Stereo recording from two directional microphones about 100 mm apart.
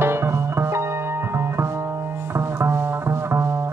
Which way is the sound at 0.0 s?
25° right (ahead or behind).